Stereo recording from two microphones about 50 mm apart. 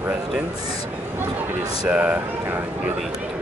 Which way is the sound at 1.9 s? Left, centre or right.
Right.